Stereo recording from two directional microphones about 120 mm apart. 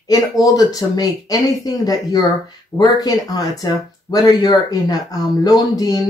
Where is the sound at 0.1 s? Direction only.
30° left (ahead or behind).